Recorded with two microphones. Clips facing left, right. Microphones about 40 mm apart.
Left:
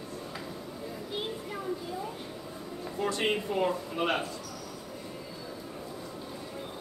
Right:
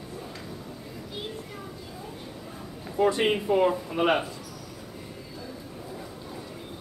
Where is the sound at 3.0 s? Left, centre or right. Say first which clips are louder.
Right 6 dB; centre.